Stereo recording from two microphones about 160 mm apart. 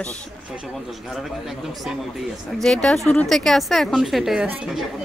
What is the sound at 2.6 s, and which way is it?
Speech, 5° left (ahead or behind).